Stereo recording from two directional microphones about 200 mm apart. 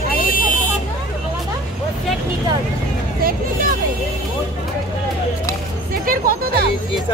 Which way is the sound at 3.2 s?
45° right (ahead or behind).